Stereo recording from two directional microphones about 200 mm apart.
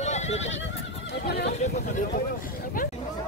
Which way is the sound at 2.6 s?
45° left (ahead or behind).